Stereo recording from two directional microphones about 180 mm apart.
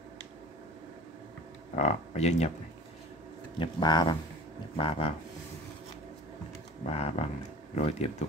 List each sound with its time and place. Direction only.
1.8 s speech: 35° left (ahead or behind)
3.5 s speech: 25° left (ahead or behind)
6.9 s speech: 35° left (ahead or behind)